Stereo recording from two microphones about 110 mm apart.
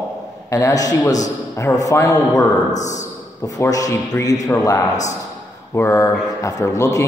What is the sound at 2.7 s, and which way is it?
Speech, 90° left.